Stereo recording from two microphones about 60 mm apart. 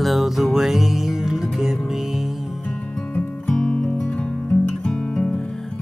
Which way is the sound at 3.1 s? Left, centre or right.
Left.